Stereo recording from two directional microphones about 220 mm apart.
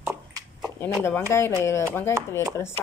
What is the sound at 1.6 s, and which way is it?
Speech, 15° left (ahead or behind).